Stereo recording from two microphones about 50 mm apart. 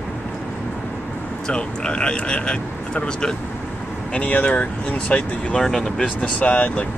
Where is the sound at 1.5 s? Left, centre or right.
Centre.